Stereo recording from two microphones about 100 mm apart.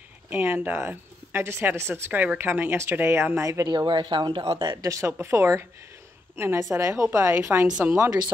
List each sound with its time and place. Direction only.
0.3 s a woman's voice: 20° right (ahead or behind)
3.6 s speech: 50° right (ahead or behind)
4.8 s a woman's voice: 30° right (ahead or behind)